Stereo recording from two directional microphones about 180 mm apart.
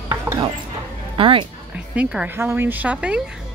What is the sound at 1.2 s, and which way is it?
Speech, 30° right (ahead or behind).